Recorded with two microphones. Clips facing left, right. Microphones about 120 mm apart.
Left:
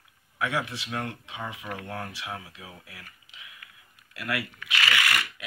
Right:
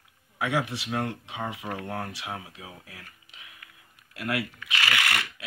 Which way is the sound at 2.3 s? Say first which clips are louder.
Right 1 dB; 20° right (ahead or behind).